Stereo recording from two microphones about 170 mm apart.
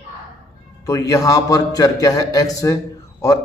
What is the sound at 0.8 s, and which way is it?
A man's voice, 20° left (ahead or behind).